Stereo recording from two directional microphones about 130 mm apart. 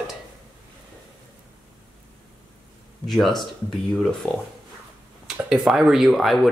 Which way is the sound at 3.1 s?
Centre (ahead or behind).